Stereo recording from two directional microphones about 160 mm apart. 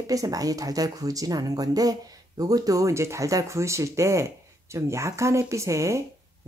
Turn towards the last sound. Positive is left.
turn(degrees=-20)  # may be behind; listen again after turning